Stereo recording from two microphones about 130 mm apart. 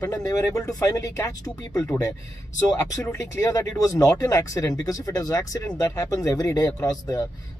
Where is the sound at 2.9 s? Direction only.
25° left (ahead or behind).